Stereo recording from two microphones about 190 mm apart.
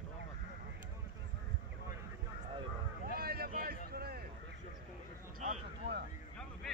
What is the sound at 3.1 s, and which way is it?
Vehicle, 55° right (ahead or behind).